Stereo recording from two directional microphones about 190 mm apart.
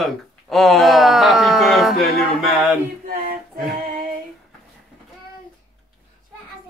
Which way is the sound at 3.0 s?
50° right (ahead or behind).